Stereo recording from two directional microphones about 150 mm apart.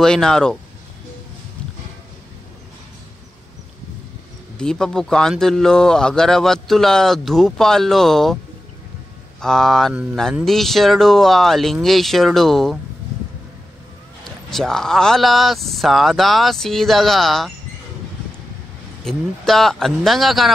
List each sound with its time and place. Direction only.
0.0 s speech: 5° left (ahead or behind)
4.6 s speech: 5° left (ahead or behind)
9.4 s speech: 5° left (ahead or behind)
14.2 s speech: centre (ahead or behind)
19.0 s speech: centre (ahead or behind)